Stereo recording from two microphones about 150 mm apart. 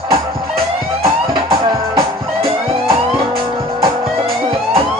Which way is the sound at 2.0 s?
40° right (ahead or behind).